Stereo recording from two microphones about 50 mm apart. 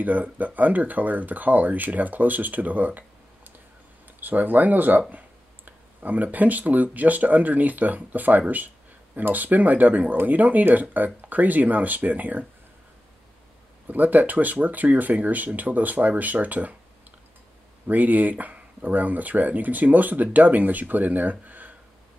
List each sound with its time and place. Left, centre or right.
0.0 s speech: right
4.2 s speech: right
13.8 s speech: right
17.8 s speech: right